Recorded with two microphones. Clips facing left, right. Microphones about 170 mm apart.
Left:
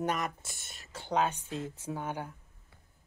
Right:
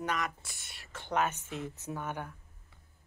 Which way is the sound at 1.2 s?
30° left (ahead or behind).